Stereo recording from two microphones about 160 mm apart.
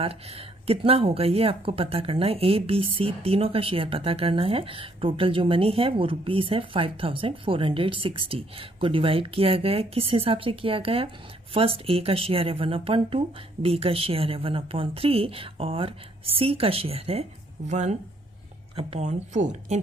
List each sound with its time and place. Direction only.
0.0 s speech: 35° right (ahead or behind)